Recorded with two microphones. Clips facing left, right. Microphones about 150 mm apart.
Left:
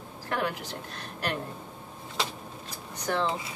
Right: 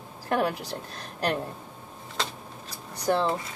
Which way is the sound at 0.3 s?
35° right (ahead or behind).